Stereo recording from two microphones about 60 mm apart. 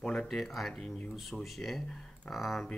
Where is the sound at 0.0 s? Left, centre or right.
Centre.